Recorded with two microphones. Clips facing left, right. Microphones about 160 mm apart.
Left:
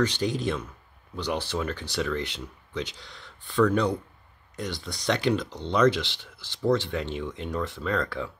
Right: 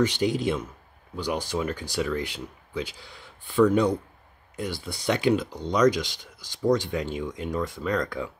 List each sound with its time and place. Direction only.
0.0 s speech: 10° right (ahead or behind)